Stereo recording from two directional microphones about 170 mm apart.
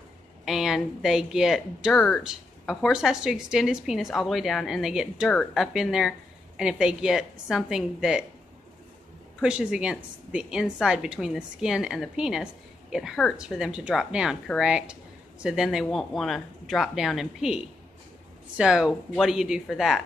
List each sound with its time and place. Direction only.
0.5 s a woman's voice: centre (ahead or behind)
9.4 s a woman's voice: 5° right (ahead or behind)